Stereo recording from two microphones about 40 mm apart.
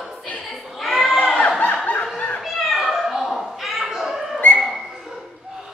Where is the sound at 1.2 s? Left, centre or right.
Left.